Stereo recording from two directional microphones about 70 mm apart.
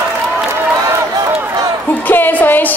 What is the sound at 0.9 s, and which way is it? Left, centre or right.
Run, right.